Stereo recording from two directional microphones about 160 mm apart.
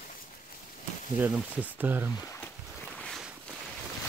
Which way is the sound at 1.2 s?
10° right (ahead or behind).